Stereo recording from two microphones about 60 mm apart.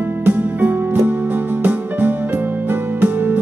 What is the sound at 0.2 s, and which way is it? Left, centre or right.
Music, right.